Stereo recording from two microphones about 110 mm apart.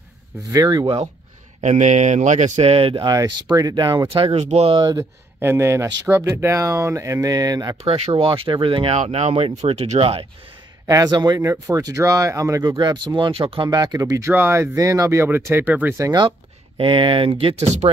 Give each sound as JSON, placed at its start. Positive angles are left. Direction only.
{"t": 0.5, "sound": "speech", "side_deg": -35}
{"t": 1.6, "sound": "speech", "side_deg": -90}
{"t": 3.2, "sound": "speech", "side_deg": -35}
{"t": 4.1, "sound": "speech", "side_deg": -60}
{"t": 4.9, "sound": "speech", "side_deg": -25}
{"t": 7.8, "sound": "speech", "side_deg": -65}
{"t": 8.9, "sound": "speech", "side_deg": -85}
{"t": 10.9, "sound": "speech", "side_deg": -35}
{"t": 16.0, "sound": "speech", "side_deg": -40}
{"t": 17.6, "sound": "speech", "side_deg": -90}